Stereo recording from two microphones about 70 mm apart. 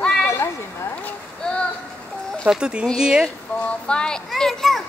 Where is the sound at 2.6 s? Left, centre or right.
Centre.